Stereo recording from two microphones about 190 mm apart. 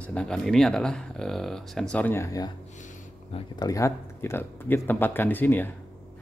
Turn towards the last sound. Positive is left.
turn(degrees=10)  # may be behind; listen again after turning